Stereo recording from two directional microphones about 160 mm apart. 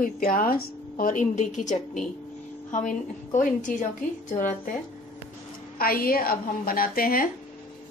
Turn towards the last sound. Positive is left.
turn(degrees=65)  # may be behind; listen again after turning